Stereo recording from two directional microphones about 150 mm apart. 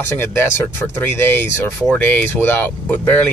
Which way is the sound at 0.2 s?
15° left (ahead or behind).